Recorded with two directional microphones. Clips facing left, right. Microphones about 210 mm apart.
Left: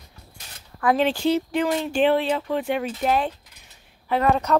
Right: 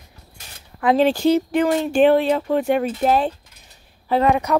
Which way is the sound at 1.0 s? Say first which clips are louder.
Right 8 dB; 40° right (ahead or behind).